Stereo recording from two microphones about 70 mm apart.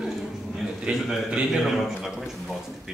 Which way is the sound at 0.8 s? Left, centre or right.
Centre.